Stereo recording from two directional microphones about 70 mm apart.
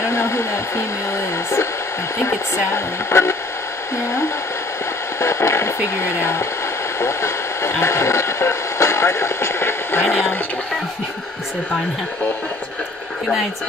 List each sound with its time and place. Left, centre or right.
0.0 s radio: left
2.1 s speech: left